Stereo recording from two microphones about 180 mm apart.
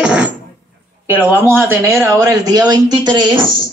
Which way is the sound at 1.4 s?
10° right (ahead or behind).